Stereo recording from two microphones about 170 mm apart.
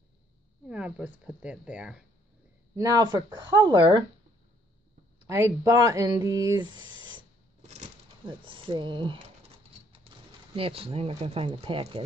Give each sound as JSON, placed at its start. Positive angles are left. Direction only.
{"t": 0.7, "sound": "speech", "side_deg": -5}
{"t": 2.7, "sound": "speech", "side_deg": -20}
{"t": 5.2, "sound": "speech", "side_deg": -15}
{"t": 8.5, "sound": "speech", "side_deg": -30}